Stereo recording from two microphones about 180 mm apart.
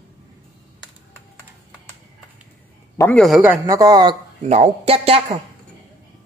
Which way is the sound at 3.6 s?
20° right (ahead or behind).